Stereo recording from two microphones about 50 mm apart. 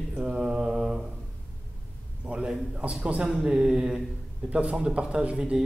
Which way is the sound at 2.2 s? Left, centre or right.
Right.